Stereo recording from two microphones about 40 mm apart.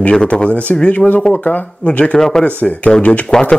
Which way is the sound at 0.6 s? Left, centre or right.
Left.